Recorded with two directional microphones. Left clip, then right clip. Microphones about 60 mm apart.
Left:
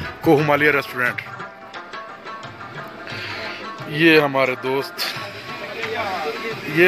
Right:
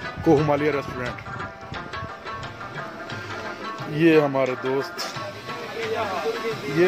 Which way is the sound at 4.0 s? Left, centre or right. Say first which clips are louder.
Left 4 dB; right.